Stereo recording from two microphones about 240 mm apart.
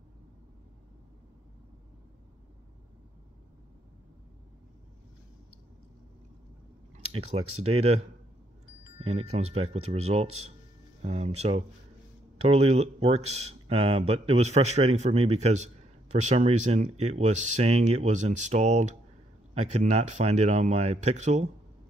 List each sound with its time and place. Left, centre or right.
7.1 s speech: right
8.9 s speech: right